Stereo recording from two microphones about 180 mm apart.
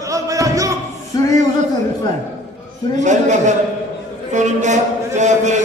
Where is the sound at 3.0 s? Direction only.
40° right (ahead or behind).